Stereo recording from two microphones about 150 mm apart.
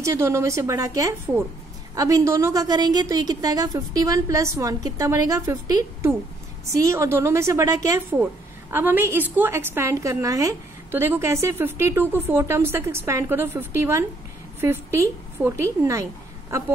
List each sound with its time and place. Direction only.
0.0 s a woman's voice: 20° right (ahead or behind)
8.2 s a woman's voice: 15° right (ahead or behind)